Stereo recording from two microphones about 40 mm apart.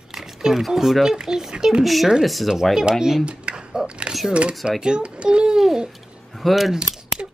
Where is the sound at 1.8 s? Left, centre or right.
Centre.